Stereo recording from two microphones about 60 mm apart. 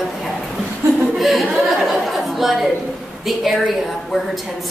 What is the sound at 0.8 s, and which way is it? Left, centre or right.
Chuckle, right.